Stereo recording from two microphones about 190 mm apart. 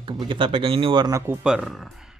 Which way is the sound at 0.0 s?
25° right (ahead or behind).